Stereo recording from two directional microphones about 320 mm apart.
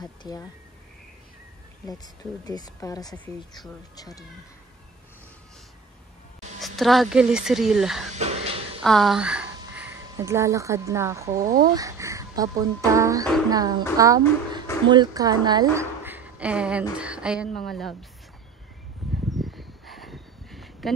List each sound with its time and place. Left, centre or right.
0.0 s speech: centre
2.4 s speech: centre
6.6 s speech: centre
8.2 s a sound: centre
8.8 s speech: centre
19.0 s a sound: centre